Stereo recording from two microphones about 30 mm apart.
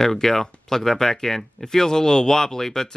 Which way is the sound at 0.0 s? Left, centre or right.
Centre.